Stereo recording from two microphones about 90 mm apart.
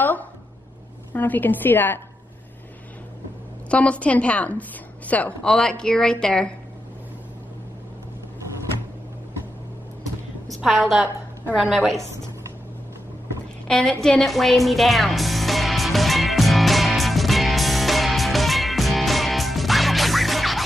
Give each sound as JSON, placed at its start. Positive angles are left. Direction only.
{"t": 0.0, "sound": "a sound", "side_deg": 20}
{"t": 1.1, "sound": "a woman's voice", "side_deg": 20}
{"t": 3.6, "sound": "a woman's voice", "side_deg": 15}
{"t": 10.5, "sound": "a woman's voice", "side_deg": 0}
{"t": 13.7, "sound": "music", "side_deg": 10}